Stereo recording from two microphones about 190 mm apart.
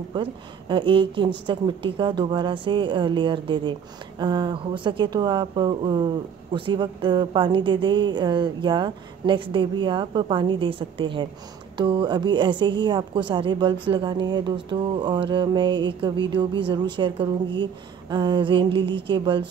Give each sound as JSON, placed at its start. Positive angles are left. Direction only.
{"t": 0.1, "sound": "a woman's voice", "side_deg": -25}